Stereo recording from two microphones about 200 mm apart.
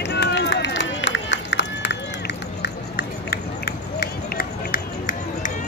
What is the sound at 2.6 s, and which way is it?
Run, 55° left (ahead or behind).